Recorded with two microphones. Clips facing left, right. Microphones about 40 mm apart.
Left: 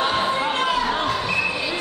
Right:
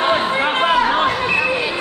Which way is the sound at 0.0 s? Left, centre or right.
Right.